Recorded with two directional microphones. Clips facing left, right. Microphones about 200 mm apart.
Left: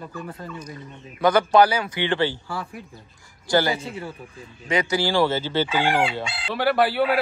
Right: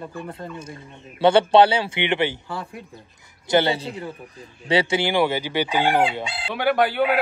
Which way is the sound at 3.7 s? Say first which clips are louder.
Right 1 dB; 30° right (ahead or behind).